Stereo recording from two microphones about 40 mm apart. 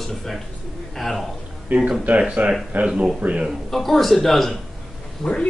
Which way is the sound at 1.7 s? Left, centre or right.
Right.